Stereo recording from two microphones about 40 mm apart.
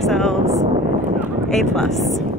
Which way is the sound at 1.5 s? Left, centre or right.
Centre.